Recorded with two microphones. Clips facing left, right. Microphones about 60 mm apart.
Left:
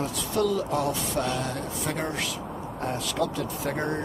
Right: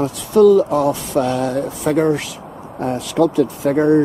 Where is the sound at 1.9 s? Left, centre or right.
Right.